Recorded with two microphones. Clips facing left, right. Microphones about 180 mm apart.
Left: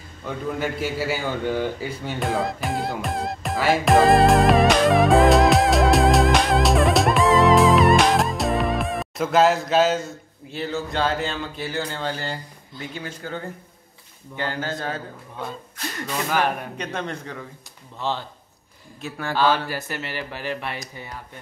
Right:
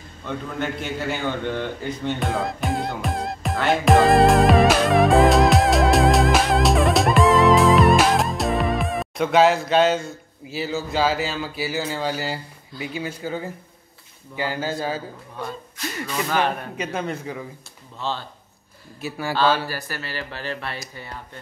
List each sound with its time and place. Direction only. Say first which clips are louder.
0.6 s speech: left 1 dB; 5° left (ahead or behind)
16.3 s speech: even; 10° left (ahead or behind)
16.7 s a man's voice: right 2 dB; 5° right (ahead or behind)
18.9 s a man's voice: right 2 dB; 5° right (ahead or behind)
19.7 s speech: left 1 dB; 20° left (ahead or behind)